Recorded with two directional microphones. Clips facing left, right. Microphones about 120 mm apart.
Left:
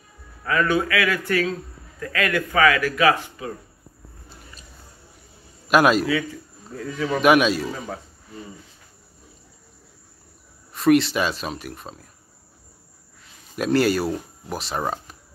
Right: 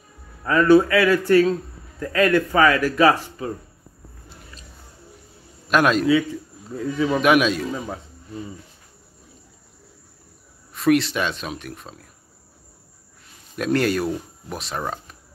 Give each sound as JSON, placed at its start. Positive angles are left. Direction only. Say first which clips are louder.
{"t": 0.5, "sound": "speech", "louder": "right 7 dB", "side_deg": -30}
{"t": 5.7, "sound": "speech", "louder": "left 1 dB", "side_deg": 5}
{"t": 6.7, "sound": "speech", "louder": "right 4 dB", "side_deg": -20}
{"t": 7.2, "sound": "speech", "louder": "left 2 dB", "side_deg": 0}
{"t": 10.7, "sound": "speech", "louder": "left 1 dB", "side_deg": 0}
{"t": 13.6, "sound": "speech", "louder": "left 1 dB", "side_deg": 5}